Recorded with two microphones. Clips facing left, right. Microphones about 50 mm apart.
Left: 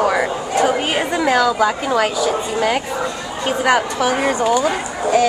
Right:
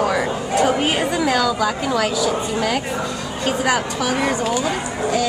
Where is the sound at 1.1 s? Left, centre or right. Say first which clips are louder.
Left 3 dB; centre.